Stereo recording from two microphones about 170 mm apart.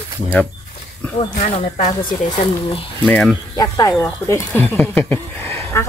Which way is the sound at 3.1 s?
Centre (ahead or behind).